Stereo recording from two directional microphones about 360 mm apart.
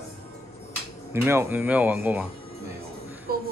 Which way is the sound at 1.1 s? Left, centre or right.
Centre.